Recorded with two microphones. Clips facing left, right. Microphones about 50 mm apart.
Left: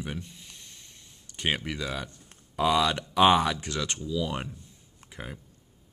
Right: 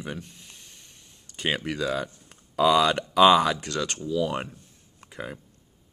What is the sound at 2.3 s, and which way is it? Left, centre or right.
Speech, right.